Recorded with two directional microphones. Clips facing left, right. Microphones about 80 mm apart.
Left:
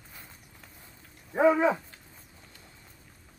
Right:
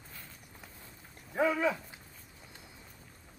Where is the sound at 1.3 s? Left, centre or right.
Left.